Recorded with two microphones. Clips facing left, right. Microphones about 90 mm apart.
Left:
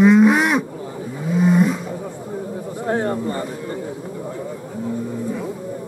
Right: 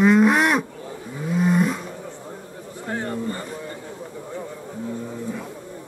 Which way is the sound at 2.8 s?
30° left (ahead or behind).